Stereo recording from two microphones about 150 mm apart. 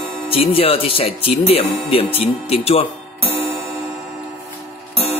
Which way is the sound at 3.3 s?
Centre (ahead or behind).